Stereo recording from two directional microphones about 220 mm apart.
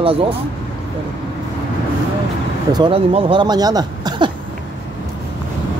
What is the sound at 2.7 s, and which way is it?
Speech, 25° right (ahead or behind).